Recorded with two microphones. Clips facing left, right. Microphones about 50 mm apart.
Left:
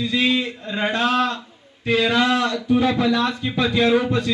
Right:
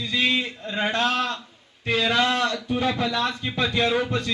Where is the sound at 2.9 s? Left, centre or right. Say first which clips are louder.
Left 5 dB; left.